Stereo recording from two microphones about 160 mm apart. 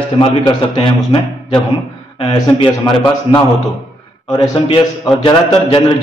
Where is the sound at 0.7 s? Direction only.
30° left (ahead or behind).